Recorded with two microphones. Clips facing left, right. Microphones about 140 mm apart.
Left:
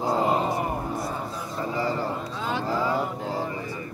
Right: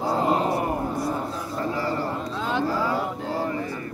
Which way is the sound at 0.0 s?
Centre (ahead or behind).